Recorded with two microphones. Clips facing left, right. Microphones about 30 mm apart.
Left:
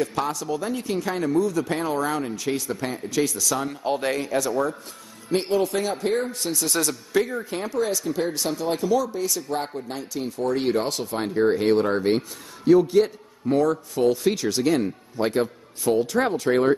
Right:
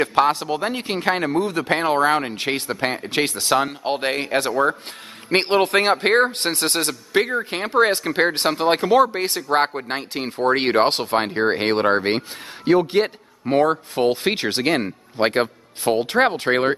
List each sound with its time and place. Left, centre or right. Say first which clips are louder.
0.0 s a man's voice: right 8 dB; right